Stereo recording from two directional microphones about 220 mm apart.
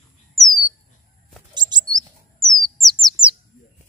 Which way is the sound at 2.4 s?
Centre (ahead or behind).